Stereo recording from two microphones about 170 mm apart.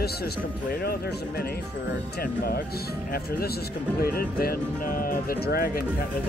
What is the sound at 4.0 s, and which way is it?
Speech, 60° left (ahead or behind).